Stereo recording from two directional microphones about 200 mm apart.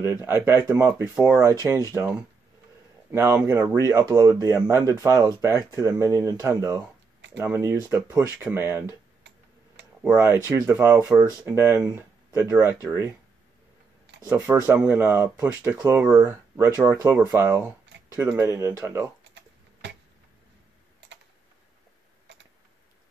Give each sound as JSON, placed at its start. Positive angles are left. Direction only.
{"t": 0.5, "sound": "speech", "side_deg": -10}
{"t": 10.1, "sound": "speech", "side_deg": -15}
{"t": 14.2, "sound": "speech", "side_deg": -10}
{"t": 19.4, "sound": "a sound", "side_deg": -65}